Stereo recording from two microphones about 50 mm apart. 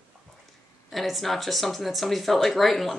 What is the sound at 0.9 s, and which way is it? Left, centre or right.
Speech, centre.